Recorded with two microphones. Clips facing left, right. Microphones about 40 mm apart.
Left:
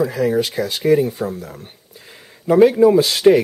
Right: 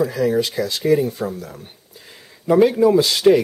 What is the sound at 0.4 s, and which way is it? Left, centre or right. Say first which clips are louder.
Speech: left 1 dB; left.